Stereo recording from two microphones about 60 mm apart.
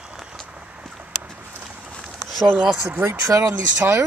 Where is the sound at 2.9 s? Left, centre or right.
Right.